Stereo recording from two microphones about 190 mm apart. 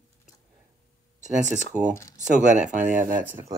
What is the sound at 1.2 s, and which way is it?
Speech, 40° right (ahead or behind).